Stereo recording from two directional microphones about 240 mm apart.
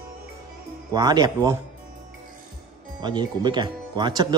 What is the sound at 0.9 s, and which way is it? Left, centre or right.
Speech, centre.